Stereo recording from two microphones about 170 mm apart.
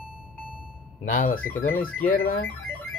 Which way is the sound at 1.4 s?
10° left (ahead or behind).